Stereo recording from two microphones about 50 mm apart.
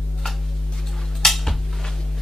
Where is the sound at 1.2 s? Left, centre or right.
Centre.